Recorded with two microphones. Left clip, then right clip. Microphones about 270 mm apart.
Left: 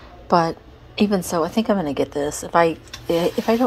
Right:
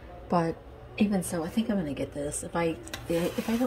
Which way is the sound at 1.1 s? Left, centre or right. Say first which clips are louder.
Left 11 dB; centre.